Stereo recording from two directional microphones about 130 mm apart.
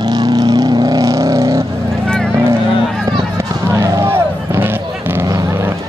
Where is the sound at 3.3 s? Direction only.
25° right (ahead or behind).